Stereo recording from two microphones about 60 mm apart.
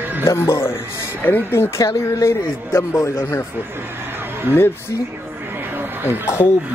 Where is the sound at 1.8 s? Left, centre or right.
Left.